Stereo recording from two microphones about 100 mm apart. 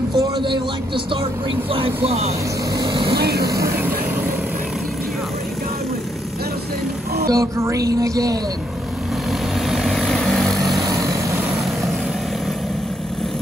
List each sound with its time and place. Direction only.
0.4 s a man's voice: 55° right (ahead or behind)
2.0 s speech: 90° right
2.8 s vehicle: 55° right (ahead or behind)
7.2 s music: 30° right (ahead or behind)
9.7 s vehicle: 5° right (ahead or behind)